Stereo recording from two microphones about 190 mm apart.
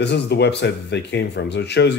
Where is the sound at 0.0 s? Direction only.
65° left (ahead or behind).